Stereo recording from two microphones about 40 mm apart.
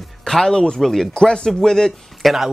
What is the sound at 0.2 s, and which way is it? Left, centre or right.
Speech, centre.